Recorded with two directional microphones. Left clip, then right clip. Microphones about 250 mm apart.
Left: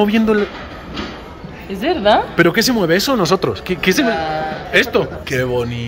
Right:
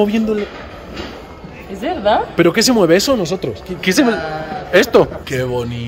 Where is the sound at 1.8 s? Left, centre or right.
Left.